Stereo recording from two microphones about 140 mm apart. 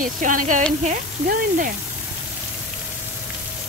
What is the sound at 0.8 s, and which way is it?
Speech, 80° right.